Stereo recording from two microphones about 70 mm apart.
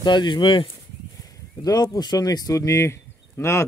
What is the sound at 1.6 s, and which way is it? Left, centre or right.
Speech, left.